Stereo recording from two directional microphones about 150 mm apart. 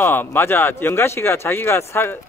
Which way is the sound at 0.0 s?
15° left (ahead or behind).